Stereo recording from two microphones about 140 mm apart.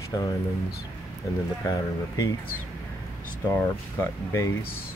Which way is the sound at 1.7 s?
25° left (ahead or behind).